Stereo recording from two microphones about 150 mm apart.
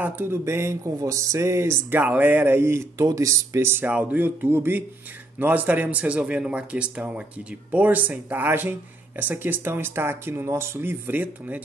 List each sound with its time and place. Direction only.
0.0 s speech: 15° right (ahead or behind)